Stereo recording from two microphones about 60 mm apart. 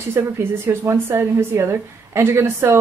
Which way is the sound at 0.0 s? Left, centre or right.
Right.